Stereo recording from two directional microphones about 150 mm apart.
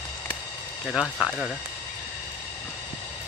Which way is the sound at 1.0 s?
10° left (ahead or behind).